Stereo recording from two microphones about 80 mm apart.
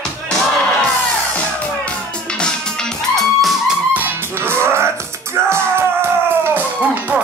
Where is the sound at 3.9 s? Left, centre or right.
Right.